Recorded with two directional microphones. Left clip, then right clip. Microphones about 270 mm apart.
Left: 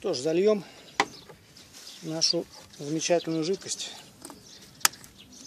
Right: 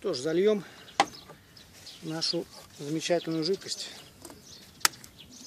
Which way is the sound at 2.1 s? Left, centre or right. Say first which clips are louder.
Left 4 dB; centre.